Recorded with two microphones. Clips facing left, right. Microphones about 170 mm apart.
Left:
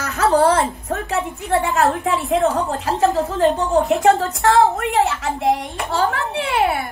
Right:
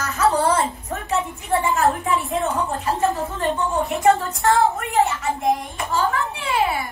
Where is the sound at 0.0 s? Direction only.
60° left (ahead or behind).